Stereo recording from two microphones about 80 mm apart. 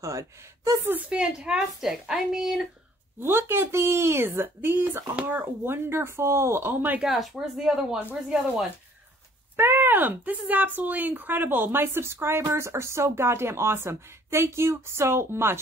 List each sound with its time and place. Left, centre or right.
0.0 s speech: right
0.8 s a woman's voice: centre
3.2 s a woman's voice: right
7.0 s a woman's voice: centre
9.6 s speech: right